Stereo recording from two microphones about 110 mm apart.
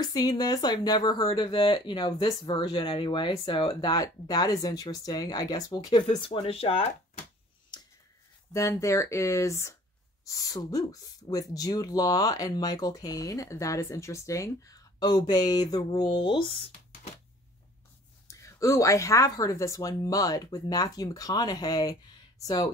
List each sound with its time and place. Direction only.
0.0 s speech: 35° left (ahead or behind)
1.3 s speech: 50° left (ahead or behind)
6.0 s speech: 55° left (ahead or behind)
8.5 s speech: 25° left (ahead or behind)
16.1 s speech: 50° left (ahead or behind)
18.3 s speech: 30° left (ahead or behind)